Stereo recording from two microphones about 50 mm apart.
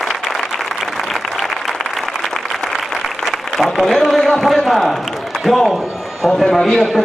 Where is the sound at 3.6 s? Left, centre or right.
Centre.